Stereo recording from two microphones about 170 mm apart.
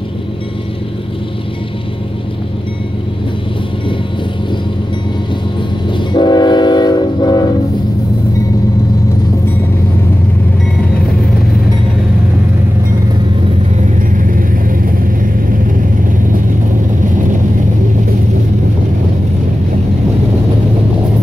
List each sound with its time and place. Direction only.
5.9 s train: 25° left (ahead or behind)
14.1 s vehicle: 50° right (ahead or behind)